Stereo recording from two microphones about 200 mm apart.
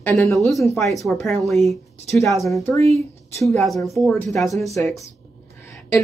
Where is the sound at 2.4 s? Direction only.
15° left (ahead or behind).